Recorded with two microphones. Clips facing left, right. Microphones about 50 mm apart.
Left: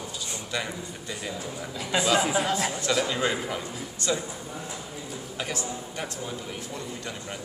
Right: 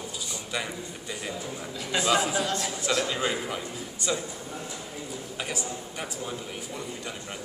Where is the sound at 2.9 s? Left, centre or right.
Centre.